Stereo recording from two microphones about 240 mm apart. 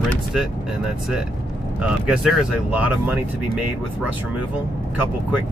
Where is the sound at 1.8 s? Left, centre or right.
Centre.